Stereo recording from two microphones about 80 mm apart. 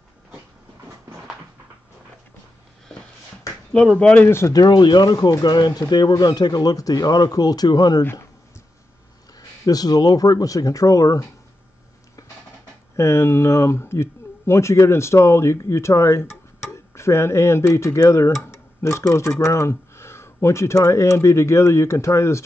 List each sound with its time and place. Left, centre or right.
4.0 s speech: centre
4.3 s speech: left
4.6 s speech: left
8.0 s speech: left
9.4 s speech: left
12.9 s speech: left